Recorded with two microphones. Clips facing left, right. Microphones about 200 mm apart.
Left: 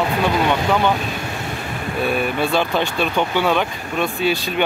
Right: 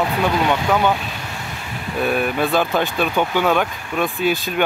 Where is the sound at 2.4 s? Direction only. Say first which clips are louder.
Right 1 dB; centre (ahead or behind).